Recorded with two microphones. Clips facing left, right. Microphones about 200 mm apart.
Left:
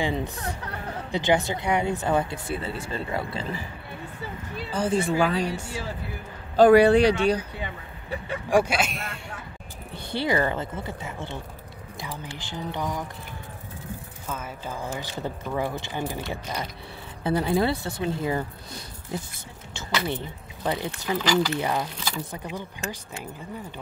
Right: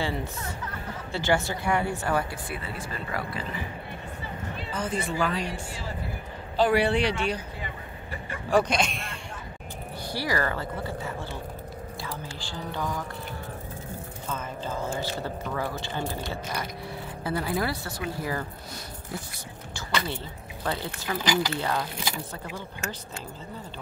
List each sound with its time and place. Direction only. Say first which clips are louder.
0.0 s speech: left 3 dB; 20° left (ahead or behind)
4.7 s speech: left 6 dB; 30° left (ahead or behind)
6.5 s speech: left 8 dB; 45° left (ahead or behind)
8.5 s speech: left 1 dB; 10° left (ahead or behind)
9.9 s speech: left 4 dB; 25° left (ahead or behind)
14.2 s speech: right 1 dB; 10° left (ahead or behind)
21.2 s speech: left 3 dB; 15° right (ahead or behind)
21.5 s speech: left 2 dB; 15° left (ahead or behind)